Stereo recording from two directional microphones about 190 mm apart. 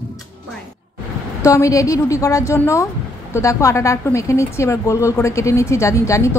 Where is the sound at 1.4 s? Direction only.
15° left (ahead or behind).